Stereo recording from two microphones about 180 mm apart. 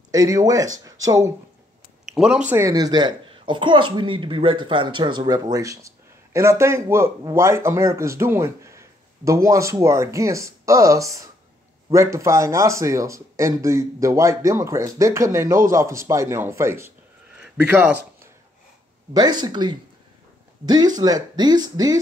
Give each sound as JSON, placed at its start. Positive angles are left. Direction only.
{"t": 0.1, "sound": "speech", "side_deg": -20}
{"t": 2.1, "sound": "a woman's voice", "side_deg": -5}
{"t": 19.1, "sound": "speech", "side_deg": -25}